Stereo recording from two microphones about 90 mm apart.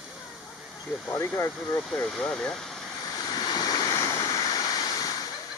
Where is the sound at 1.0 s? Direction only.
35° left (ahead or behind).